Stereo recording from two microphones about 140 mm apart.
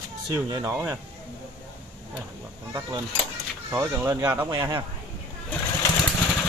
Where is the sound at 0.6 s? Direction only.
15° right (ahead or behind).